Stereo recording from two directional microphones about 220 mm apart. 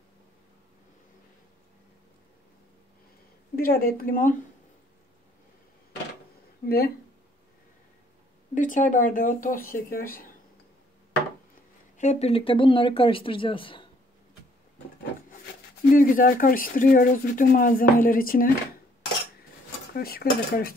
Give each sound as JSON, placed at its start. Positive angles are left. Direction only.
{"t": 3.5, "sound": "speech", "side_deg": 40}
{"t": 6.6, "sound": "speech", "side_deg": 45}
{"t": 8.5, "sound": "speech", "side_deg": 35}
{"t": 12.0, "sound": "speech", "side_deg": 30}
{"t": 15.9, "sound": "speech", "side_deg": 40}
{"t": 19.9, "sound": "dishes", "side_deg": 45}